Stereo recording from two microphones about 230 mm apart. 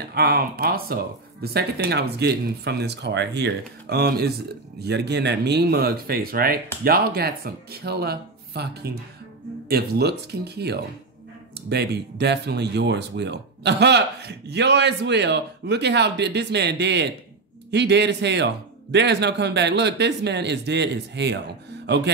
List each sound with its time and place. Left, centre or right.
0.1 s speech: right